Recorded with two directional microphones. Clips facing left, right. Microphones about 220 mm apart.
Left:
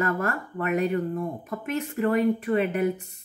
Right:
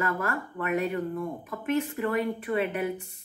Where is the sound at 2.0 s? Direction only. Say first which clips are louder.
Left 5 dB; 35° left (ahead or behind).